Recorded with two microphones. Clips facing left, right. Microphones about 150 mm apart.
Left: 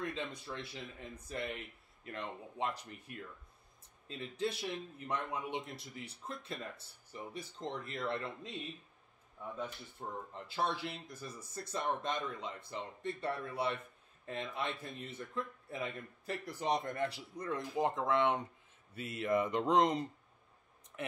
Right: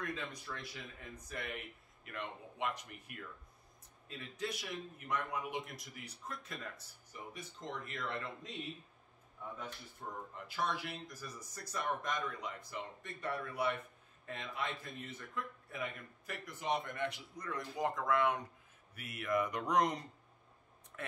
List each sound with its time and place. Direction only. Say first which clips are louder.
0.0 s speech: left 2 dB; 25° left (ahead or behind)
9.6 s speech: left 5 dB; 30° left (ahead or behind)